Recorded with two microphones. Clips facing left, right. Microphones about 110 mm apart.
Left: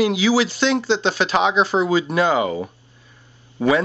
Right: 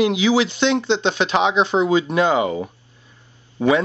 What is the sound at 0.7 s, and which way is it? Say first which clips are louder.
Speech: even; 5° left (ahead or behind).